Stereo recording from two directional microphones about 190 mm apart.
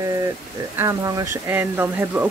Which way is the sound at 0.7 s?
15° right (ahead or behind).